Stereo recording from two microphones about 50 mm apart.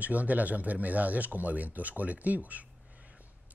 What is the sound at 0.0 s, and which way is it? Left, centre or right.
A man's voice, right.